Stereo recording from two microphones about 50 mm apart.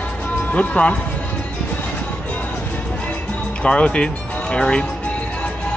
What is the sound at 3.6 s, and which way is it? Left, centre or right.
Speech, left.